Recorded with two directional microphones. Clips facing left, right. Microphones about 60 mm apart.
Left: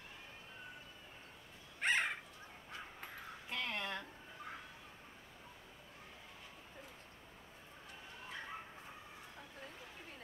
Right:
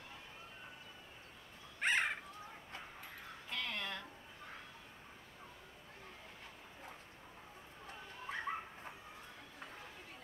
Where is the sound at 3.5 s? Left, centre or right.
Centre.